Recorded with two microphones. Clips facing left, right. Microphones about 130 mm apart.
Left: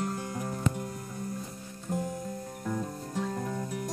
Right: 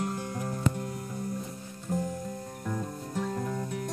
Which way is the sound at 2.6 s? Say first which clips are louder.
Left 1 dB; centre (ahead or behind).